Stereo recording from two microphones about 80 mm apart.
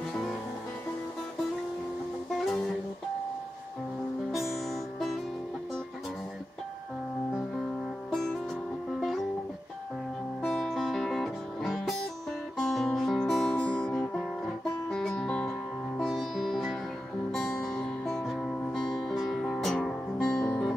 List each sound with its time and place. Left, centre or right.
2.4 s music: centre
4.3 s music: centre
10.4 s music: centre
13.5 s music: centre
14.1 s music: centre